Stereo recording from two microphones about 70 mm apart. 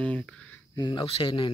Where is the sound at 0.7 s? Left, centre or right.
Left.